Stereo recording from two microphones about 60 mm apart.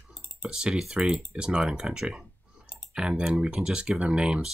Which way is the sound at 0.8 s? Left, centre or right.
Centre.